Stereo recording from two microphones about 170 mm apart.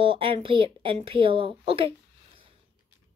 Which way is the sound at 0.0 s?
30° right (ahead or behind).